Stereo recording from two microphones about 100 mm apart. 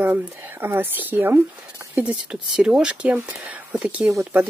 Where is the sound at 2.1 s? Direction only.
5° right (ahead or behind).